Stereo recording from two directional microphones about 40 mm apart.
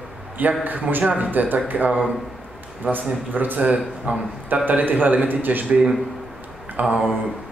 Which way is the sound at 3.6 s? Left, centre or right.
Right.